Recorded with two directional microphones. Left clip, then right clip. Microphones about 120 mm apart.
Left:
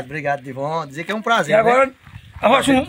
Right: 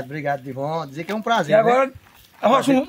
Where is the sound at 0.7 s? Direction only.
25° right (ahead or behind).